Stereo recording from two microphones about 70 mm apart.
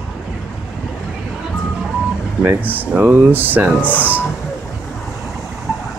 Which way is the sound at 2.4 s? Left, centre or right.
Right.